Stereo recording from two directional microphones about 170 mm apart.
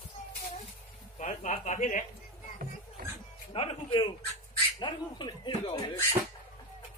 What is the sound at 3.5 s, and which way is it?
Speech, 30° left (ahead or behind).